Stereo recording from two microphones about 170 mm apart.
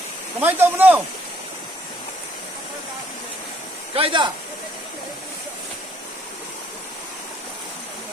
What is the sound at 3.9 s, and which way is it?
Speech, 30° right (ahead or behind).